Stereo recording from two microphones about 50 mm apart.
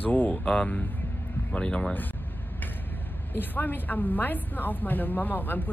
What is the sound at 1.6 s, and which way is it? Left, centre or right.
Speech, centre.